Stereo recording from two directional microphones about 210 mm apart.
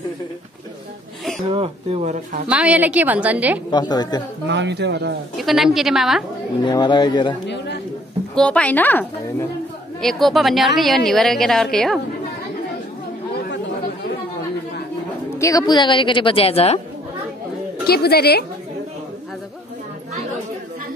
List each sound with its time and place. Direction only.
1.5 s speech: 30° right (ahead or behind)
2.4 s a woman's voice: 5° right (ahead or behind)
3.7 s speech: 20° left (ahead or behind)
4.5 s speech: 55° right (ahead or behind)
5.4 s a woman's voice: centre (ahead or behind)
6.6 s speech: 20° left (ahead or behind)
7.4 s speech: 55° left (ahead or behind)
8.4 s a woman's voice: 5° left (ahead or behind)
15.3 s speech: 15° left (ahead or behind)
17.8 s a woman's voice: 50° left (ahead or behind)